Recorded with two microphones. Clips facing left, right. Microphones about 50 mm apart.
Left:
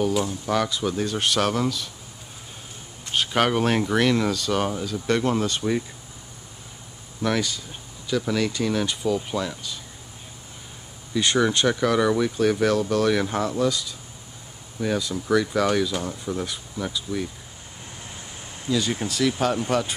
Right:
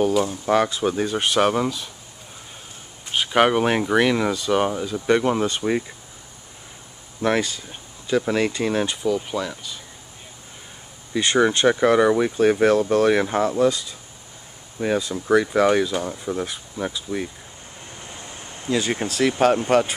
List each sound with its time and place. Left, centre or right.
0.2 s speech: right
3.1 s speech: centre
7.2 s speech: right
8.8 s speech: centre
11.1 s speech: centre
15.9 s speech: centre
18.7 s speech: right